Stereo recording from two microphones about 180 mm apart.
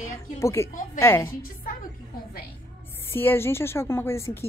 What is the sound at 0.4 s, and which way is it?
Speech, 15° left (ahead or behind).